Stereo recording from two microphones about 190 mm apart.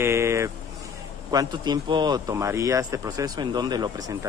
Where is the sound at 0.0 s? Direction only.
15° right (ahead or behind).